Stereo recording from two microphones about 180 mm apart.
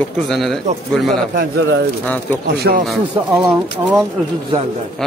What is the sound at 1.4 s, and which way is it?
Speech, 70° right (ahead or behind).